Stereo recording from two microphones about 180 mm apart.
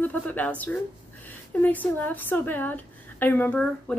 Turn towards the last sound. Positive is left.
turn(degrees=10)  # may be behind; listen again after turning